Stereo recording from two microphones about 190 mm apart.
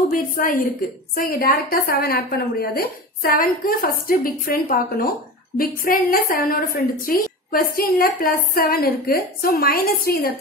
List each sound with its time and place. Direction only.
0.1 s a woman's voice: 50° left (ahead or behind)